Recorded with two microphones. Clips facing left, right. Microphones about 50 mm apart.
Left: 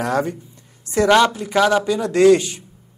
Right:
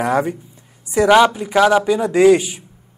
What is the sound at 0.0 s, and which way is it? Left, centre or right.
A man's voice, centre.